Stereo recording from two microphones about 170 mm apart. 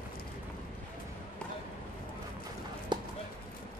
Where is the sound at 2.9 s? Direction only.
25° right (ahead or behind).